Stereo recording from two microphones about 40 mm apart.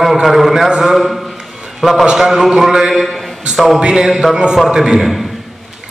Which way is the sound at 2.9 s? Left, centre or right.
Centre.